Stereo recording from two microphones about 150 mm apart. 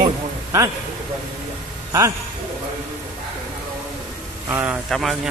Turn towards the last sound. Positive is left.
turn(degrees=0)  # may be behind; listen again after turning